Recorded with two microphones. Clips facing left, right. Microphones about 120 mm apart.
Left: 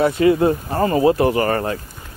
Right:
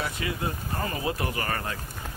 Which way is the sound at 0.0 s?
50° left (ahead or behind).